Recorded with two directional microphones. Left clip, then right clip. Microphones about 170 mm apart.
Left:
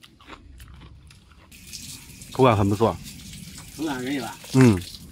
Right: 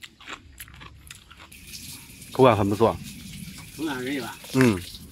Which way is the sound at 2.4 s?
15° left (ahead or behind).